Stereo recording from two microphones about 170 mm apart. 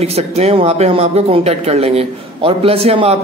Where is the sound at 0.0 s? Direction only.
40° right (ahead or behind).